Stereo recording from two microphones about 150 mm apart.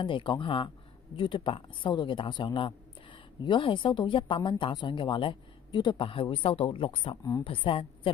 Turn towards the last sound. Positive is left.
turn(degrees=35)  # may be behind; listen again after turning